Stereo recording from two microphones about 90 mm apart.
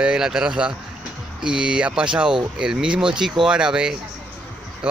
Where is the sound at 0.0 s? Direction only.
10° right (ahead or behind).